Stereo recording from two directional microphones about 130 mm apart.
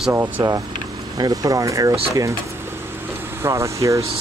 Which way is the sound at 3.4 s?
20° right (ahead or behind).